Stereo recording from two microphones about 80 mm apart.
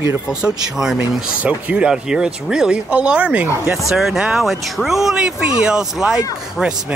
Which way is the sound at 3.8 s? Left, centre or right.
Centre.